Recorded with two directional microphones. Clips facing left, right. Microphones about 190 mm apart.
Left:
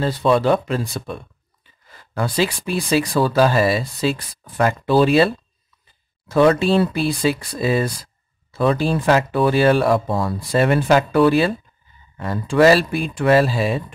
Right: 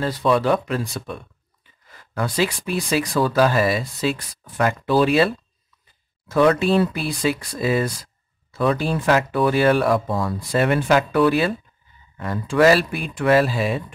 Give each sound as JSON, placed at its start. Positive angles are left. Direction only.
{"t": 0.0, "sound": "speech", "side_deg": 25}